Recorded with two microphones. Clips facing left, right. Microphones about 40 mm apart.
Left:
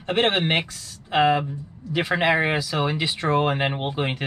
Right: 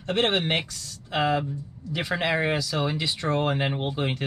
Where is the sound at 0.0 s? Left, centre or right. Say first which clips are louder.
Left 3 dB; left.